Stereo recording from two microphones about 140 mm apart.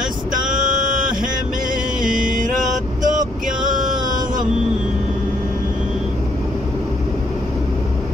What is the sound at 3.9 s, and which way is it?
Music, 30° right (ahead or behind).